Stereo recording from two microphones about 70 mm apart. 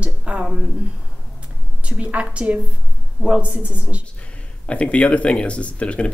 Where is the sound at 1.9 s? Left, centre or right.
Centre.